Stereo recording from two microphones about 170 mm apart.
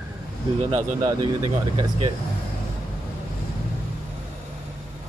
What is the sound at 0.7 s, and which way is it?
Speech, 30° right (ahead or behind).